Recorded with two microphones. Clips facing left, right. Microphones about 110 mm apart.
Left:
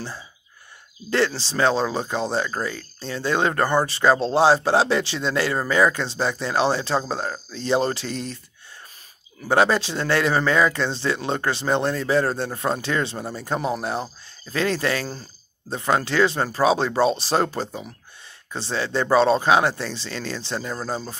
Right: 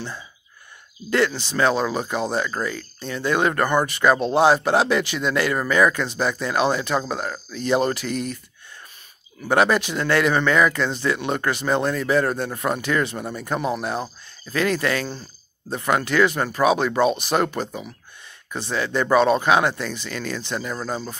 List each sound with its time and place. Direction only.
1.1 s speech: 30° left (ahead or behind)
9.5 s speech: 30° left (ahead or behind)